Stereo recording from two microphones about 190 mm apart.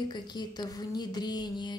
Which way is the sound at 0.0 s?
20° left (ahead or behind).